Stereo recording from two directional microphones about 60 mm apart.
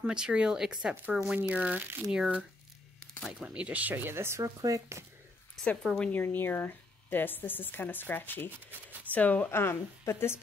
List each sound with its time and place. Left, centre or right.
0.0 s speech: centre
2.0 s speech: centre; by 4.4 s right
4.4 s speech: right
5.8 s speech: centre
6.3 s speech: left
8.5 s speech: right
9.1 s a woman's voice: left
9.5 s a woman's voice: left